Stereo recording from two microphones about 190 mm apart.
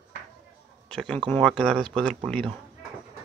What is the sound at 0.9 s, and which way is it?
Speech, 5° left (ahead or behind).